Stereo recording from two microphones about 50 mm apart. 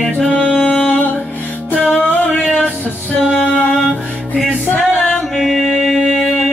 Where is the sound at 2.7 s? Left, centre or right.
Centre.